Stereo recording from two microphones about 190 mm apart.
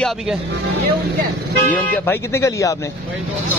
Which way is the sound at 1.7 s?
10° left (ahead or behind).